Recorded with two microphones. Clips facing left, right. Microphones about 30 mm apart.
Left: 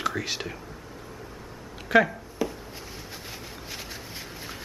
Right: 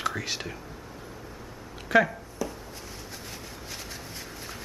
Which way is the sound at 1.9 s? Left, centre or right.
Centre.